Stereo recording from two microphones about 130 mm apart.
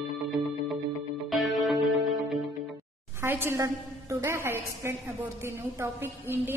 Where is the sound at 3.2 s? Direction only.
15° right (ahead or behind).